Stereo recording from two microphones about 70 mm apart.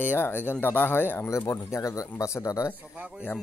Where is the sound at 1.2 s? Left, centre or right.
Left.